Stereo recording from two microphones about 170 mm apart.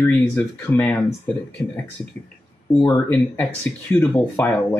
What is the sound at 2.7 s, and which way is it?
Speech, 15° left (ahead or behind).